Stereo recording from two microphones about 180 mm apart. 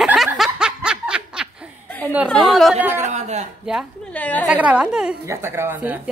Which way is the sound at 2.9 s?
40° right (ahead or behind).